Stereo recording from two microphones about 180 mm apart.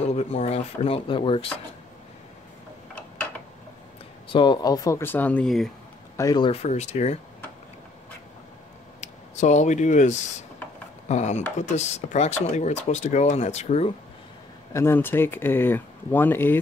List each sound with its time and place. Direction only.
0.1 s speech: 35° left (ahead or behind)
4.3 s speech: 25° left (ahead or behind); by 5.7 s centre (ahead or behind)
6.1 s speech: 20° left (ahead or behind)
6.6 s speech: 40° left (ahead or behind)
9.0 s speech: 40° left (ahead or behind)
14.7 s speech: 15° left (ahead or behind)